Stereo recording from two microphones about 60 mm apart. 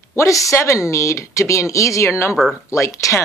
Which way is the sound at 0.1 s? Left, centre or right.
Left.